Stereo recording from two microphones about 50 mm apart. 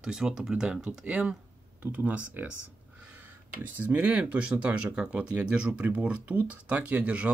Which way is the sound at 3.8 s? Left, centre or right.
Right.